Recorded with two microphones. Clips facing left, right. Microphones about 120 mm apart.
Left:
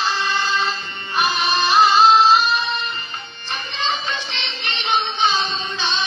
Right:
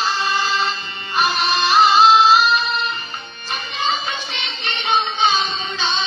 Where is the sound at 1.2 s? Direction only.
Centre (ahead or behind).